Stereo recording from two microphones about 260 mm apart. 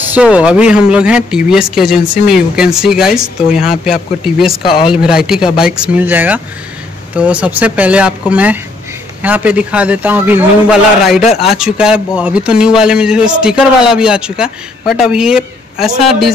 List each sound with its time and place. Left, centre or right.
0.1 s a man's voice: centre
4.6 s speech: centre
5.0 s a man's voice: centre